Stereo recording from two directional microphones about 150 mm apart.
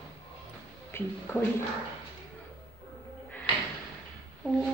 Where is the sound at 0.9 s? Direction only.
15° left (ahead or behind).